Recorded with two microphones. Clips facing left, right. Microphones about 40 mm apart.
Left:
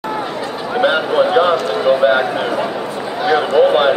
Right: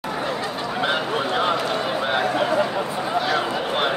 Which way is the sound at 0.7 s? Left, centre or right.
Centre.